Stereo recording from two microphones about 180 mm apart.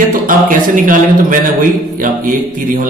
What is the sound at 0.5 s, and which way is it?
Mantra, 50° right (ahead or behind).